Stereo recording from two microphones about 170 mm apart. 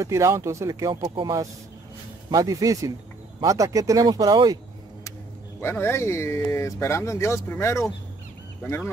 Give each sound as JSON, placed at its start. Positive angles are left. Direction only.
{"t": 0.0, "sound": "speech", "side_deg": -15}
{"t": 5.6, "sound": "speech", "side_deg": 15}